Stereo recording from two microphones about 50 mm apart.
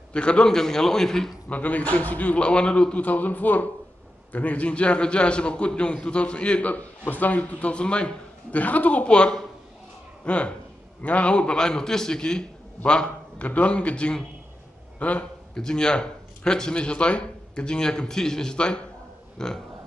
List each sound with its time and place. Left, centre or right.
0.1 s speech: centre
1.5 s a man's voice: left
8.5 s a man's voice: left
15.5 s speech: centre